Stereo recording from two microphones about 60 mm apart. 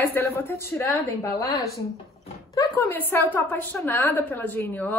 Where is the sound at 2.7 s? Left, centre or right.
Left.